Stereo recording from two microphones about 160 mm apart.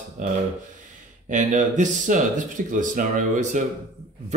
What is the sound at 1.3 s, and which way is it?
Speech, 50° right (ahead or behind).